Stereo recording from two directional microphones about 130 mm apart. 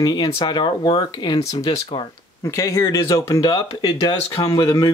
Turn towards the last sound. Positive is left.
turn(degrees=25)  # may be behind; listen again after turning